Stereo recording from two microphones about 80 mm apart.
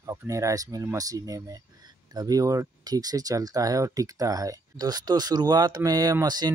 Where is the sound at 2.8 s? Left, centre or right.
Right.